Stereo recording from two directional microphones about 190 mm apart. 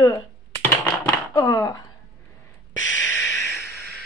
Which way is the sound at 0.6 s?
15° left (ahead or behind).